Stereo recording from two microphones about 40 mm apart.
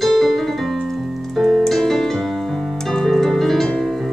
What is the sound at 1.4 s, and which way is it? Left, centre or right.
Music, centre.